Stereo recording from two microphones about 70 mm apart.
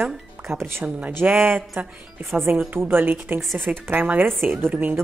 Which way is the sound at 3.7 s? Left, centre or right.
Right.